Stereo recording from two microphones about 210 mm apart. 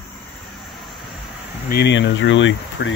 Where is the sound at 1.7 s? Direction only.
55° left (ahead or behind).